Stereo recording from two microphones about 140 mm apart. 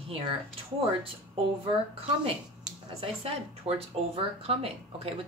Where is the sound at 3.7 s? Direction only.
45° right (ahead or behind).